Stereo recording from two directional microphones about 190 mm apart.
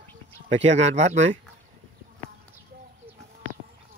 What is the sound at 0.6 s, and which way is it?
Speech, 35° right (ahead or behind).